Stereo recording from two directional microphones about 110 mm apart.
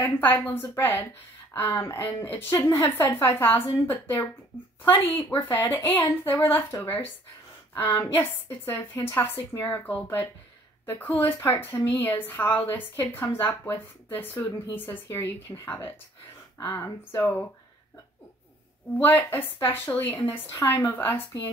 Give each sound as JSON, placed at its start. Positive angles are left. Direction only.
{"t": 0.0, "sound": "a woman's voice", "side_deg": 15}
{"t": 18.9, "sound": "a woman's voice", "side_deg": 15}